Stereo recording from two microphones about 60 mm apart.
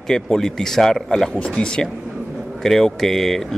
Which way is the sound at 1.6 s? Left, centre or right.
Centre.